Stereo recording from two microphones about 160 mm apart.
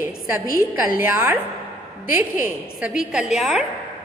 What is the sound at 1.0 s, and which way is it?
Speech, 10° right (ahead or behind).